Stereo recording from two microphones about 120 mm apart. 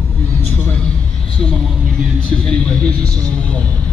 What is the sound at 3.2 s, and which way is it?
Music, 10° left (ahead or behind).